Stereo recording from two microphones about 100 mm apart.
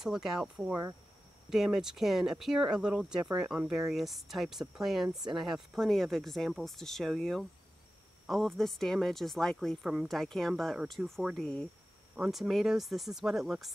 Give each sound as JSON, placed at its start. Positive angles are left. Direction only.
{"t": 0.0, "sound": "speech", "side_deg": -5}
{"t": 0.6, "sound": "speech", "side_deg": -15}
{"t": 1.5, "sound": "speech", "side_deg": -5}